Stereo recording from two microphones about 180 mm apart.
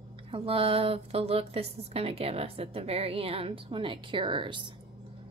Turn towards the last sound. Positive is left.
turn(degrees=-25)  # may be behind; listen again after turning